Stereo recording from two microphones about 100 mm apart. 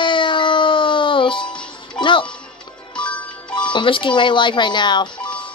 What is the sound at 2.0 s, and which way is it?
Speech, 55° left (ahead or behind).